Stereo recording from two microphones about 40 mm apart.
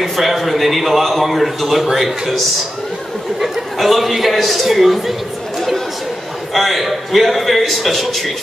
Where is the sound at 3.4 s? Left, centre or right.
Centre.